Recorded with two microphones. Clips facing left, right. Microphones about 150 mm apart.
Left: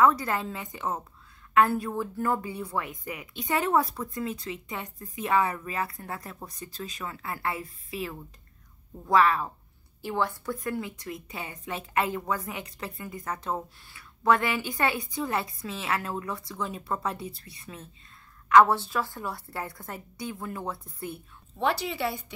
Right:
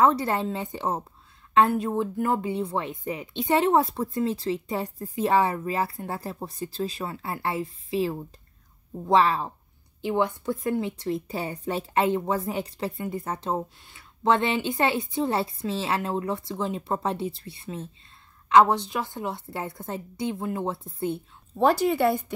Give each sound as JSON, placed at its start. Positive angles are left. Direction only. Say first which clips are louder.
{"t": 0.0, "sound": "speech", "louder": "right 2 dB", "side_deg": -30}
{"t": 21.5, "sound": "speech", "louder": "right 7 dB", "side_deg": -45}